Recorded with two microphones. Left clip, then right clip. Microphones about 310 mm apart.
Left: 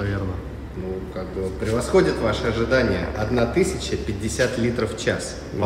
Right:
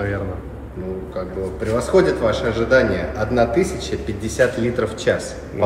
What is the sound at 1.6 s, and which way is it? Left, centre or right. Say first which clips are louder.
A man's voice: right 3 dB; centre.